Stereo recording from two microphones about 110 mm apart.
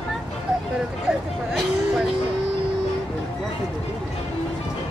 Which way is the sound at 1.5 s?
5° right (ahead or behind).